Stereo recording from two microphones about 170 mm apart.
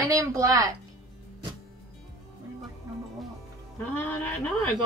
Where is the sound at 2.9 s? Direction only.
20° right (ahead or behind).